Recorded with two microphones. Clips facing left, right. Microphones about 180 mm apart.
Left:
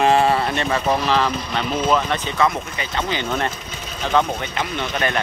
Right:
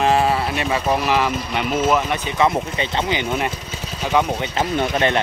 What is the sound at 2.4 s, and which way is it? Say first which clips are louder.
Speech: right 4 dB; 25° right (ahead or behind).